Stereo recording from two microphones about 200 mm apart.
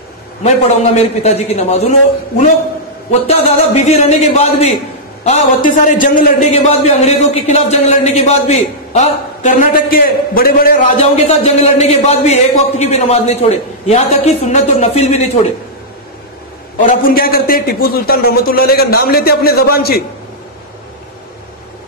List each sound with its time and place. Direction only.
1.2 s a man's voice: 35° left (ahead or behind)
11.0 s a man's voice: 30° left (ahead or behind)
16.8 s a man's voice: 40° left (ahead or behind)